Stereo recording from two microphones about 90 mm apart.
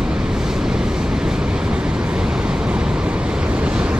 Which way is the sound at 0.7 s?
5° right (ahead or behind).